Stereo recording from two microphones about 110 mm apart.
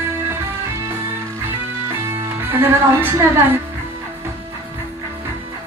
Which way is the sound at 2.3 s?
20° right (ahead or behind).